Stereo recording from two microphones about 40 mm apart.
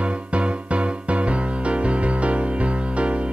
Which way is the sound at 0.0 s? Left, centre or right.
Right.